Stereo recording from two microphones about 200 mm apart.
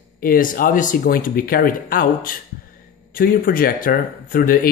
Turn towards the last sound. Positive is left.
turn(degrees=45)  # may be behind; listen again after turning